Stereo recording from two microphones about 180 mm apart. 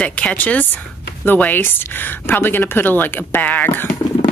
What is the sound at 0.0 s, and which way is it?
Speech, 5° left (ahead or behind).